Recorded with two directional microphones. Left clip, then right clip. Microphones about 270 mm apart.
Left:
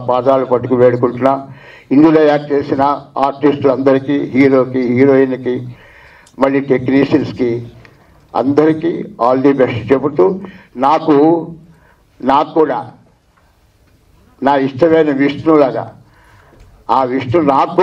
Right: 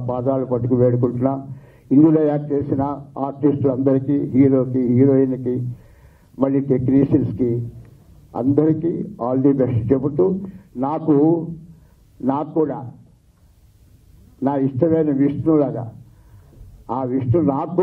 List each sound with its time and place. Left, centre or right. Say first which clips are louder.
0.0 s a man's voice: left 10 dB; centre
3.0 s a man's voice: left 11 dB; left
3.3 s a man's voice: left 7 dB; centre
5.8 s a sound: left 14 dB; centre
8.5 s a man's voice: left 5 dB; centre
14.4 s a man's voice: left 8 dB; centre
17.0 s a man's voice: left 7 dB; centre